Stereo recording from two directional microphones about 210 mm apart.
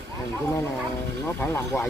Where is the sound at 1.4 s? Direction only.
5° left (ahead or behind).